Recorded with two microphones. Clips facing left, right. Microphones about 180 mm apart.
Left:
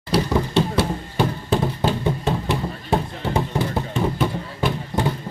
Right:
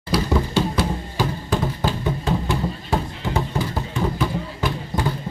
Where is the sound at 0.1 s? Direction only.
25° left (ahead or behind).